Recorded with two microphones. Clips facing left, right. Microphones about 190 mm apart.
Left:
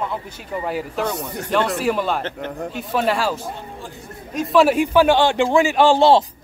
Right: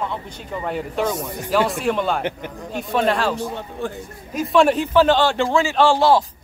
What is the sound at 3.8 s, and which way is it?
Speech, 60° right (ahead or behind).